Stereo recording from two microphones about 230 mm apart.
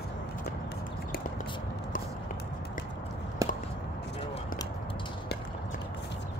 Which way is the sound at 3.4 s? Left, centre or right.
Centre.